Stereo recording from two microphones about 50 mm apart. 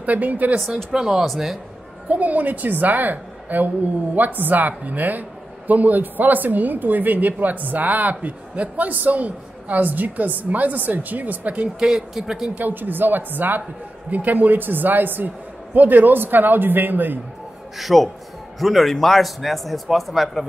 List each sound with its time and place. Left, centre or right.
0.0 s a woman's voice: right
0.9 s a man's voice: centre
2.0 s a woman's voice: right
11.8 s speech: centre
12.5 s a woman's voice: right
17.7 s a man's voice: centre